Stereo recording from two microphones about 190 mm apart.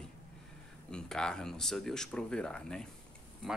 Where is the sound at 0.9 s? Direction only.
5° left (ahead or behind).